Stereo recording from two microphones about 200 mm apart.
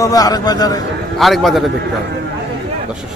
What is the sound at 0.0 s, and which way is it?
Speech, 20° left (ahead or behind).